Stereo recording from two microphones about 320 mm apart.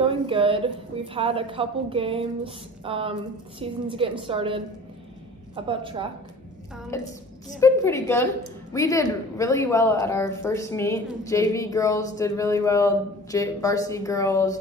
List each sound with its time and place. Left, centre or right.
0.0 s a woman's voice: centre
5.7 s a woman's voice: centre
6.9 s speech: centre